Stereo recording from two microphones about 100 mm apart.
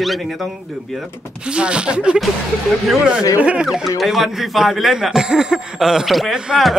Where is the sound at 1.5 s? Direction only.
10° right (ahead or behind).